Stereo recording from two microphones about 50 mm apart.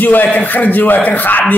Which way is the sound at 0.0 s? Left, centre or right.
Left.